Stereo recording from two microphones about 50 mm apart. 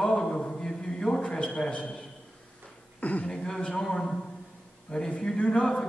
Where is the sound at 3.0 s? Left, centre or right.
Left.